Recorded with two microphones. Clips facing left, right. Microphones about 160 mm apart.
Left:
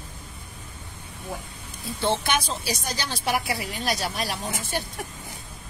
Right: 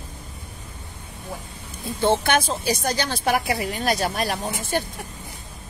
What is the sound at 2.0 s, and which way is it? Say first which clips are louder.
A woman's voice: right 5 dB; 50° right (ahead or behind).